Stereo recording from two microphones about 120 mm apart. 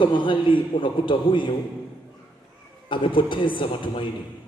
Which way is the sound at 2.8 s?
45° left (ahead or behind).